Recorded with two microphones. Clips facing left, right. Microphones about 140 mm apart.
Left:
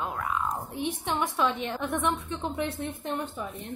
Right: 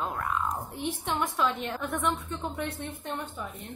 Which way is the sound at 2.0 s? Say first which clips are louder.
Left 1 dB; 20° left (ahead or behind).